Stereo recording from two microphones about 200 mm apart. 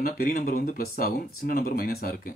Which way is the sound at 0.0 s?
50° left (ahead or behind).